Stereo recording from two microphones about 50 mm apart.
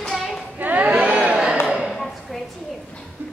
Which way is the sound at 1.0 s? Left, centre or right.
Centre.